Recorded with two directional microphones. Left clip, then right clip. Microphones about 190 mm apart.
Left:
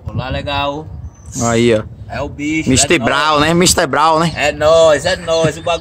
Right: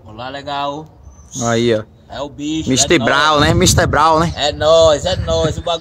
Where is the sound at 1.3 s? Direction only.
15° left (ahead or behind).